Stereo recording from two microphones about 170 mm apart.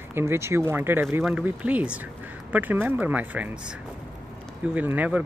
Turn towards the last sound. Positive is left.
turn(degrees=-10)  # may be behind; listen again after turning